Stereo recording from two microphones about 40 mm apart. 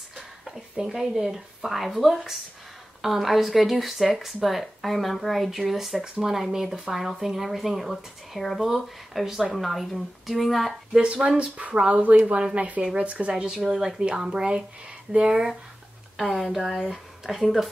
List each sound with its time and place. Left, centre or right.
0.7 s speech: centre
11.2 s speech: right
12.5 s speech: right
13.3 s speech: centre
16.2 s speech: centre